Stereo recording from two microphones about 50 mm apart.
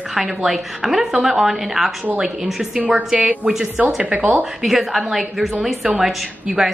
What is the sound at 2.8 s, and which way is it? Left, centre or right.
Speech, right.